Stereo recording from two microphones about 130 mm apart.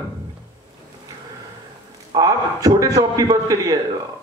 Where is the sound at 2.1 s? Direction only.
30° right (ahead or behind).